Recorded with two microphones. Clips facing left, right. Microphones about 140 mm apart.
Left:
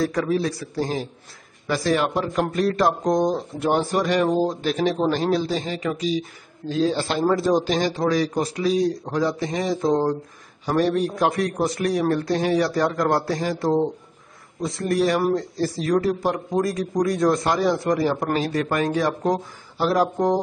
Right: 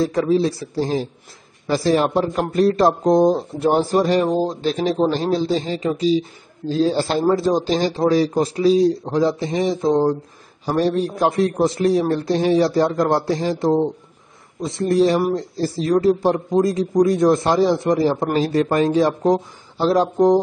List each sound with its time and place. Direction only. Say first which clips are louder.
0.0 s a man's voice: right 4 dB; 25° right (ahead or behind)